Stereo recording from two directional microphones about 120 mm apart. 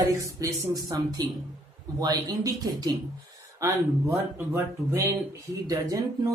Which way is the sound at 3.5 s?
25° right (ahead or behind).